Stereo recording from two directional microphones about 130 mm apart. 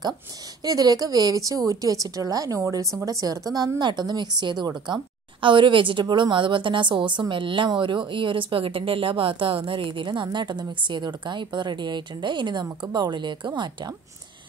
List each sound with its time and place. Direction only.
0.7 s a woman's voice: 30° right (ahead or behind)